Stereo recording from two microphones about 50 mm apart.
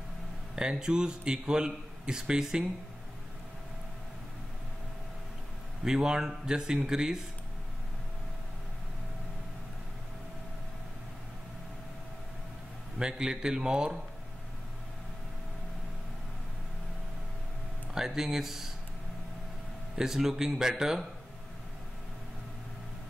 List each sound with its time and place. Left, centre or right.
0.6 s a man's voice: centre
5.9 s a man's voice: centre
13.0 s a man's voice: centre
17.9 s a man's voice: centre
20.0 s a man's voice: centre